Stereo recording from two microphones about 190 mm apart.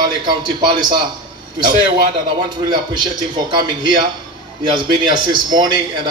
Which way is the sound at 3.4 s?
25° right (ahead or behind).